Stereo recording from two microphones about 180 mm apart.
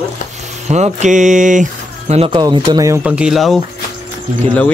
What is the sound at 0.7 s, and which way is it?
Speech, 40° right (ahead or behind).